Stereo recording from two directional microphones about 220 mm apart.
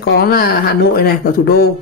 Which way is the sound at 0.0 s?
45° left (ahead or behind).